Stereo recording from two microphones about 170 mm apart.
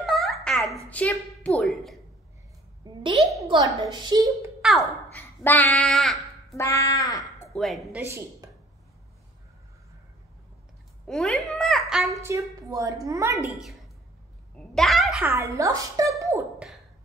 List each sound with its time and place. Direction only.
0.0 s a sound: centre (ahead or behind)
0.8 s a woman's voice: 10° left (ahead or behind)
2.8 s a sound: 25° right (ahead or behind)
3.3 s a woman's voice: 25° right (ahead or behind)
4.6 s a sound: centre (ahead or behind)
5.1 s speech: 10° left (ahead or behind)
6.5 s speech: 20° left (ahead or behind)
7.4 s a woman's voice: centre (ahead or behind)
8.1 s a woman's voice: 15° right (ahead or behind)
11.1 s a child's voice: centre (ahead or behind)
12.2 s a woman's voice: 15° right (ahead or behind)
13.5 s a child's voice: centre (ahead or behind); by 16.4 s 20° right (ahead or behind)
16.5 s a sound: centre (ahead or behind)